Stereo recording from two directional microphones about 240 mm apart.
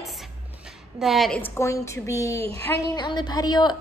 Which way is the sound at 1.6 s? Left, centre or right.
Centre.